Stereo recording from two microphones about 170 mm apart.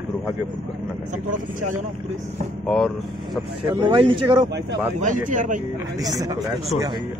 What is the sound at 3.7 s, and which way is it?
Speech, 30° right (ahead or behind).